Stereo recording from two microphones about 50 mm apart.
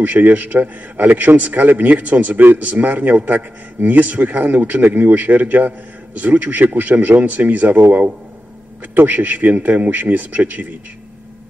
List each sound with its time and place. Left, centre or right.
0.0 s a man's voice: right
8.9 s a man's voice: right